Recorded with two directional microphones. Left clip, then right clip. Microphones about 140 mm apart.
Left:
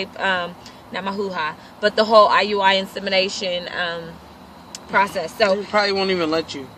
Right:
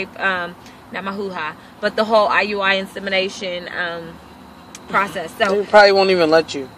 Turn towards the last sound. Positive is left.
turn(degrees=-35)  # may be behind; listen again after turning